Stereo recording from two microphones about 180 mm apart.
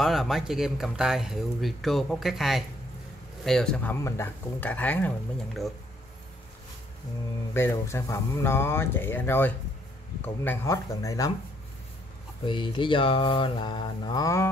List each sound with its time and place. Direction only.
0.0 s speech: centre (ahead or behind)
7.5 s speech: 15° left (ahead or behind)
12.4 s mantra: 25° left (ahead or behind)